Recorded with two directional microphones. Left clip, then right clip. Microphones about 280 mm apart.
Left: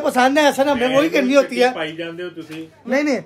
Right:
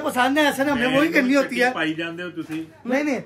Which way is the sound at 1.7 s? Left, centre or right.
Centre.